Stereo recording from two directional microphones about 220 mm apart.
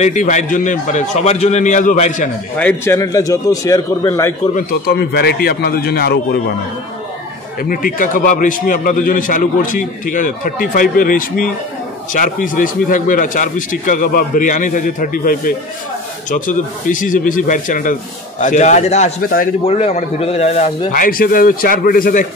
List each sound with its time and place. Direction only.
0.0 s a man's voice: 35° left (ahead or behind)
2.6 s a man's voice: 10° left (ahead or behind)
4.6 s a man's voice: 45° left (ahead or behind)
7.6 s a man's voice: 40° left (ahead or behind)
19.6 s a man's voice: 30° left (ahead or behind)